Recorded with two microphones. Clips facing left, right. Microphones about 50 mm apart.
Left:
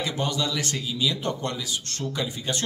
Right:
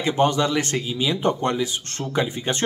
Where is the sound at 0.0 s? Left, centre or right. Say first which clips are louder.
Right 8 dB; right.